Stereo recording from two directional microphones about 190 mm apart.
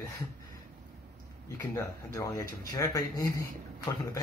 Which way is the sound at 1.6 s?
15° left (ahead or behind).